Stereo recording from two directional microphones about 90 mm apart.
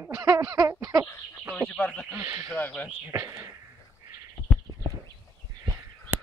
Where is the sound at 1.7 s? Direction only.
20° left (ahead or behind).